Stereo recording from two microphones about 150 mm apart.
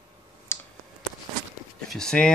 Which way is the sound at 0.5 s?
15° left (ahead or behind).